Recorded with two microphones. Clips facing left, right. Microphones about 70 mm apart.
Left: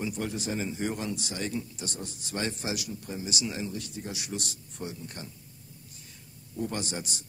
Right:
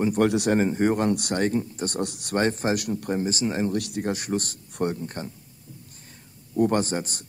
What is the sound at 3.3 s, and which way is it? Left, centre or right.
Speech, right.